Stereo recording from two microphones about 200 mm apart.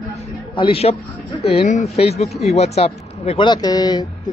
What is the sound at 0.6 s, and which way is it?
Speech, 30° left (ahead or behind).